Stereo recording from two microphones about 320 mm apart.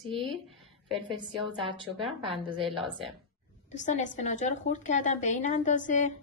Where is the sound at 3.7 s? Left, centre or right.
Left.